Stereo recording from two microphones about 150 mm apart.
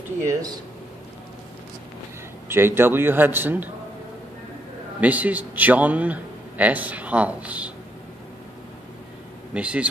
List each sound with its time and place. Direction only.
0.2 s speech: 20° right (ahead or behind)
2.4 s a man's voice: 15° right (ahead or behind)
5.0 s a man's voice: 10° right (ahead or behind)
9.5 s a man's voice: 10° right (ahead or behind)